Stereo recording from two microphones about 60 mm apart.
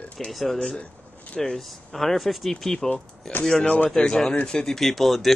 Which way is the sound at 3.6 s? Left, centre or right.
Left.